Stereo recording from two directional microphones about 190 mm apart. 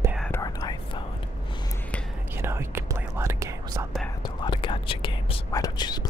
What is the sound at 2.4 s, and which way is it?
Whispering, 15° right (ahead or behind).